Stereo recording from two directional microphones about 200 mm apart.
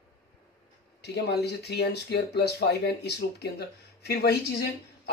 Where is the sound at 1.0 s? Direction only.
55° left (ahead or behind).